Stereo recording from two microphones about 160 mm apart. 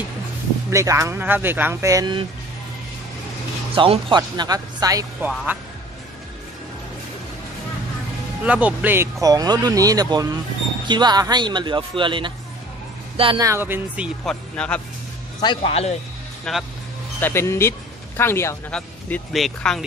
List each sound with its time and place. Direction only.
0.7 s speech: 20° right (ahead or behind)
3.7 s speech: 35° right (ahead or behind)
8.5 s speech: 10° right (ahead or behind); by 12.3 s 30° right (ahead or behind)
13.4 s speech: 15° right (ahead or behind)
14.2 s speech: 5° left (ahead or behind)
15.4 s speech: 35° left (ahead or behind)
16.5 s speech: centre (ahead or behind)
17.2 s speech: 15° left (ahead or behind)